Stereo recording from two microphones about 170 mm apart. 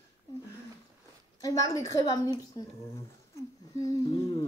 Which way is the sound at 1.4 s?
20° left (ahead or behind).